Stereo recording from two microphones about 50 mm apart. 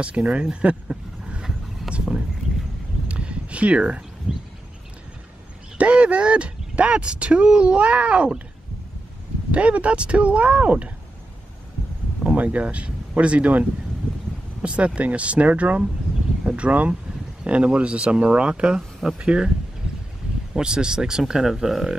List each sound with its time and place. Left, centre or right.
0.0 s vehicle: right
3.1 s a sound: right
5.8 s speech: right
9.5 s speech: right
12.4 s speech: right
20.5 s speech: centre